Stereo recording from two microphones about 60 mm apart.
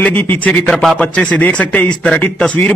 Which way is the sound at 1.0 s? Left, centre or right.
Left.